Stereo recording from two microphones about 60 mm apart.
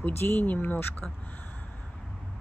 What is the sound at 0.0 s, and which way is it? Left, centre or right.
Speech, left.